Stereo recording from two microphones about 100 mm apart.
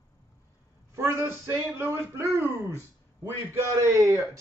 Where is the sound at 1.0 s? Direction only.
25° right (ahead or behind).